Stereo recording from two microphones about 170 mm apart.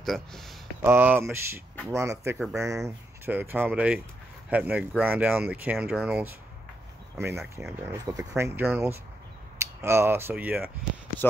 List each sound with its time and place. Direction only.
0.0 s speech: centre (ahead or behind)
0.8 s speech: 10° right (ahead or behind)